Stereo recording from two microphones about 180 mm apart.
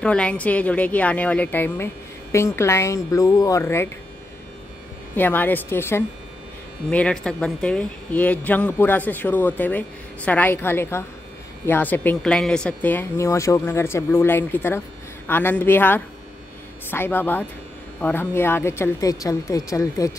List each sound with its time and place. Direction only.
0.0 s speech: 5° left (ahead or behind)
5.1 s speech: 10° left (ahead or behind)